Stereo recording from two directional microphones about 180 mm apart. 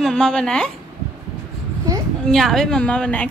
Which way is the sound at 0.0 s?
5° left (ahead or behind).